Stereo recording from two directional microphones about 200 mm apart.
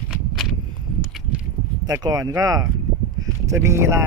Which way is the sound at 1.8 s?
15° right (ahead or behind).